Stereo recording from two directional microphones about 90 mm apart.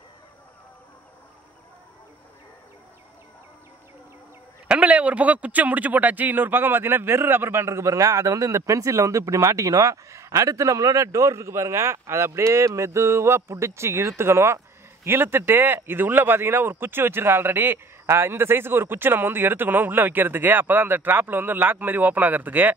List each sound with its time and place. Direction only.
4.6 s speech: 15° right (ahead or behind)